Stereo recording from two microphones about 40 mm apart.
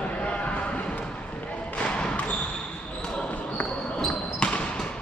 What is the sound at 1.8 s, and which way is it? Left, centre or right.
Music, left.